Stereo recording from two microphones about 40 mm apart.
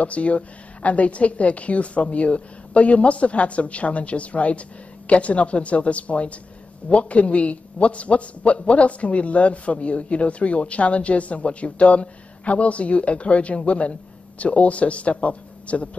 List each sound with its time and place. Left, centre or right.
0.0 s a man's voice: left